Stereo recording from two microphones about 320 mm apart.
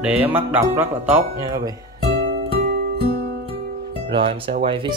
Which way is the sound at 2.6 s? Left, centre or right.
Right.